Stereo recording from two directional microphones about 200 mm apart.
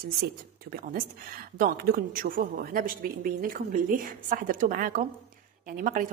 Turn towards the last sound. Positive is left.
turn(degrees=-40)  # may be behind; listen again after turning